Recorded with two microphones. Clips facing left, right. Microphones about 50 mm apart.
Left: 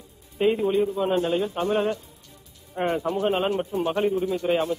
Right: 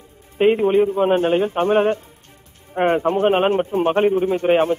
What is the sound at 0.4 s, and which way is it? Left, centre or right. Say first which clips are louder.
A man's voice: right 6 dB; right.